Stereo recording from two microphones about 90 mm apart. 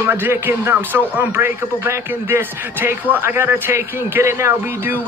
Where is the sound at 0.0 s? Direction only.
25° right (ahead or behind).